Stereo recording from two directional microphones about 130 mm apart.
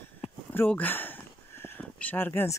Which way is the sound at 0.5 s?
15° left (ahead or behind).